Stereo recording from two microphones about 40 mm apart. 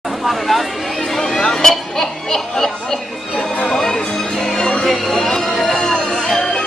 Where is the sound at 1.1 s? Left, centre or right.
Centre.